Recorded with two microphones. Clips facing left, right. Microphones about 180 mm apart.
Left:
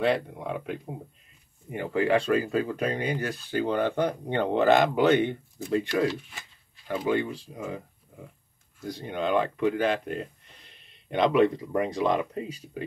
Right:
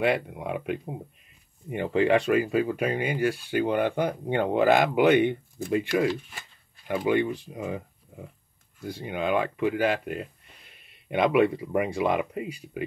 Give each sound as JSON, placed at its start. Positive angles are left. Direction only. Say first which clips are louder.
{"t": 0.0, "sound": "speech", "louder": "even", "side_deg": -15}
{"t": 7.1, "sound": "speech", "louder": "right 3 dB", "side_deg": -15}
{"t": 8.8, "sound": "speech", "louder": "even", "side_deg": -10}